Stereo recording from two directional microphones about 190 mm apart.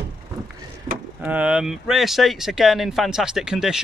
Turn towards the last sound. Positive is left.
turn(degrees=-5)  # may be behind; listen again after turning